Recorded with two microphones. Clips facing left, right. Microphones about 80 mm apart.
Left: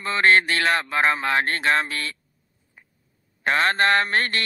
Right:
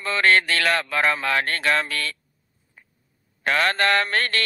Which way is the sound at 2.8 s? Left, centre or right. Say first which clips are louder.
Even; left.